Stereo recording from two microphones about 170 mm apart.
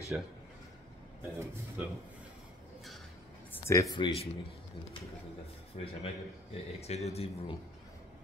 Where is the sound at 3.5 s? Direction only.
20° left (ahead or behind).